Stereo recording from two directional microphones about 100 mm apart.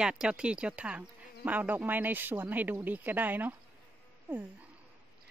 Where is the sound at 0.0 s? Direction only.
10° right (ahead or behind).